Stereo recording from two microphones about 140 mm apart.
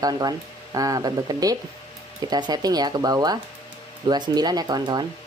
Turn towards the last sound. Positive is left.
turn(degrees=-30)  # may be behind; listen again after turning